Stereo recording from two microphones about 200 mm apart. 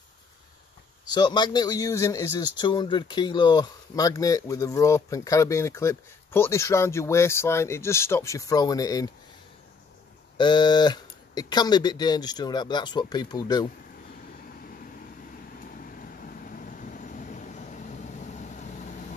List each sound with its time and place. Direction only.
1.0 s speech: 20° left (ahead or behind)
10.3 s speech: 20° left (ahead or behind)
16.0 s vehicle: 45° left (ahead or behind)